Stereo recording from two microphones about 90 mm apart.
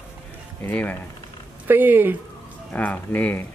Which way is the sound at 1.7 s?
20° right (ahead or behind).